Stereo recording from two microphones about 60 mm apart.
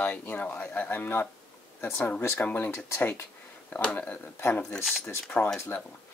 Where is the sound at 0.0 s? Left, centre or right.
Left.